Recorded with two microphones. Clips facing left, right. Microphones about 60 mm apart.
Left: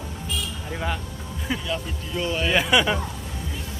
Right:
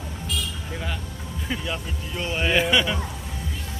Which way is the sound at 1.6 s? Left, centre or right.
Centre.